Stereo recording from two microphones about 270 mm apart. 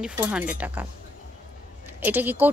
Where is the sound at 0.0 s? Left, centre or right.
Centre.